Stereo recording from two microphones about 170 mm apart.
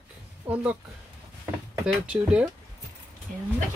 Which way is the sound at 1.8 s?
5° right (ahead or behind).